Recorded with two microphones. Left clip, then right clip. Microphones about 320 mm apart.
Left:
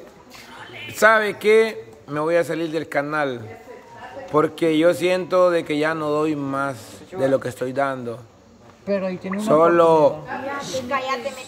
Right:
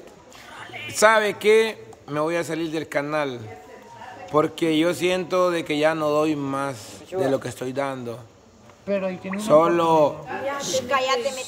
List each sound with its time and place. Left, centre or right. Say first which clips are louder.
0.9 s speech: left 1 dB; centre
8.8 s speech: left 2 dB; left
9.4 s speech: left 2 dB; centre
10.6 s a woman's voice: right 4 dB; right